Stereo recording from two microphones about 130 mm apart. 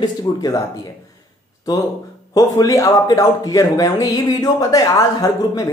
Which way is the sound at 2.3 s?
25° left (ahead or behind).